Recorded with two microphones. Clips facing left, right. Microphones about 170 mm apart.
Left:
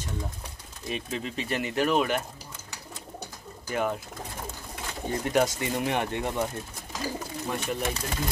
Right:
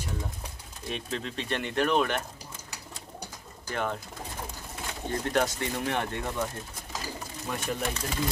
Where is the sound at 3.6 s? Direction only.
10° left (ahead or behind).